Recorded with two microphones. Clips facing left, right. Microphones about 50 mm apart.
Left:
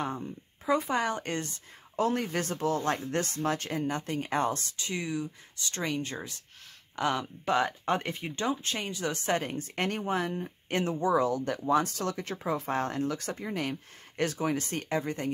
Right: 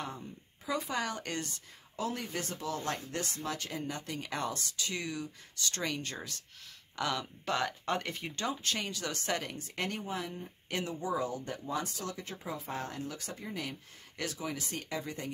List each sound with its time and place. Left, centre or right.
0.7 s speech: left
2.0 s speech: left
4.9 s speech: centre; by 10.5 s left
10.7 s speech: left
11.0 s speech: left